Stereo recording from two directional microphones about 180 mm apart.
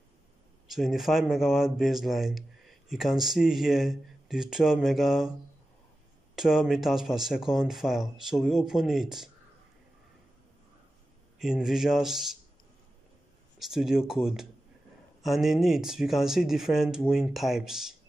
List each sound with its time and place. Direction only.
0.7 s speech: centre (ahead or behind)
6.3 s speech: 5° right (ahead or behind)
11.3 s speech: 5° right (ahead or behind)
13.6 s speech: centre (ahead or behind)